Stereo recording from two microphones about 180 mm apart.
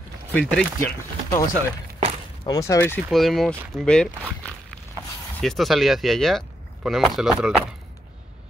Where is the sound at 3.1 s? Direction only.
Centre (ahead or behind).